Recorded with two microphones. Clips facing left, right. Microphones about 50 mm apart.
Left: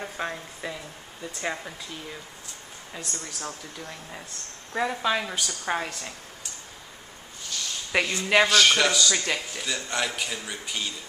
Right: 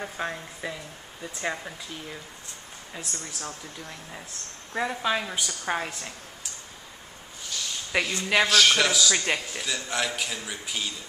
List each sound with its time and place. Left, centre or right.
0.0 s a man's voice: centre
8.1 s speech: centre
8.4 s a man's voice: centre
9.1 s speech: centre
9.6 s a man's voice: centre